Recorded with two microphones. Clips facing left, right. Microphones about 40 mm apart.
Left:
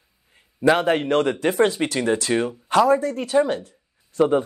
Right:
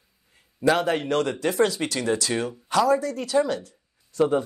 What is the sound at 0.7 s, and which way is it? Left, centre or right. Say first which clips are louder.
A man's voice: left 4 dB; left.